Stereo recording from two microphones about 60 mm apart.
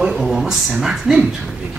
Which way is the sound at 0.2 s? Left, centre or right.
Centre.